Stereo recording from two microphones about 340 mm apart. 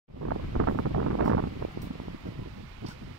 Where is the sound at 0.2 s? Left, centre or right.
Right.